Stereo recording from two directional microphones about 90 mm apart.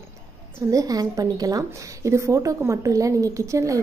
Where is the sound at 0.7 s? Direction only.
40° right (ahead or behind).